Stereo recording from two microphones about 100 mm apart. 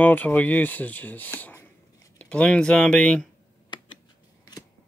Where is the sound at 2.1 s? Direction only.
10° left (ahead or behind).